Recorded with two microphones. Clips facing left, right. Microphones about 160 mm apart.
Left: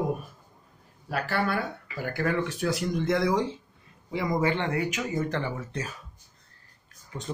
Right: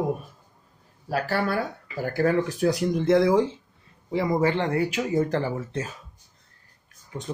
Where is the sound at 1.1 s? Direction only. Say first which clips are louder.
Right 3 dB; 40° right (ahead or behind).